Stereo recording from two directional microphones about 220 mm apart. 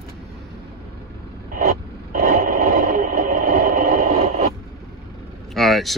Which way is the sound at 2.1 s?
40° right (ahead or behind).